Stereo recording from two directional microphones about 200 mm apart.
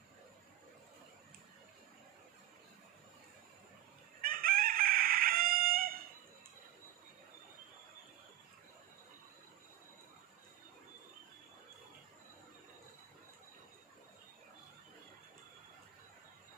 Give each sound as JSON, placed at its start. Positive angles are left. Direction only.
{"t": 4.2, "sound": "chicken", "side_deg": -45}